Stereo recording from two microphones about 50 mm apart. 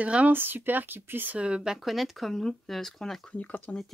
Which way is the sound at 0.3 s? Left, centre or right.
Right.